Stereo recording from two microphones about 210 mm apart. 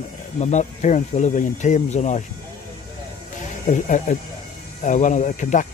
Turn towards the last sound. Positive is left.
turn(degrees=35)  # may be behind; listen again after turning